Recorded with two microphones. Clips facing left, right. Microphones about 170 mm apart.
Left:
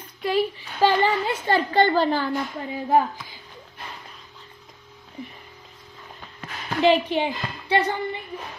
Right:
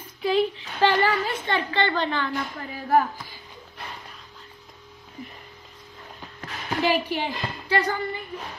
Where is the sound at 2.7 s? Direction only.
20° left (ahead or behind).